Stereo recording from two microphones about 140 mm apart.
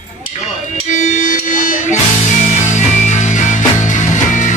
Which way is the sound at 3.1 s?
60° left (ahead or behind).